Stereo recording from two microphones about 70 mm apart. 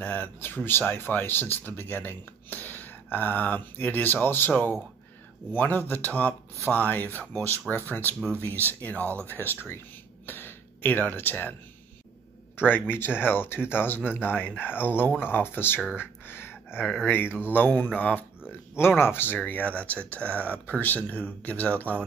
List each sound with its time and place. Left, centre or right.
0.0 s speech: left
10.2 s throat clearing: left
12.5 s speech: left
16.0 s a sound: left
17.0 s speech: left
18.8 s speech: left